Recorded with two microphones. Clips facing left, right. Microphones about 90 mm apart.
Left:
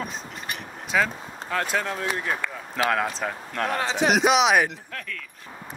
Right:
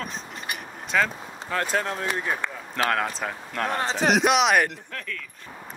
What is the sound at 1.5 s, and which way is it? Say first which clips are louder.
Speech: even; 40° right (ahead or behind).